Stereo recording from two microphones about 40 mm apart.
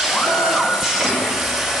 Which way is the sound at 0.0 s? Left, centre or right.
Centre.